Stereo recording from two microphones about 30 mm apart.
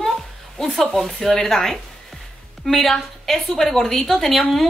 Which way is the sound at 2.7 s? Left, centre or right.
Centre.